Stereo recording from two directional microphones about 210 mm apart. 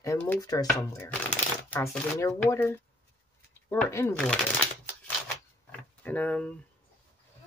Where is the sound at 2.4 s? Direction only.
10° left (ahead or behind).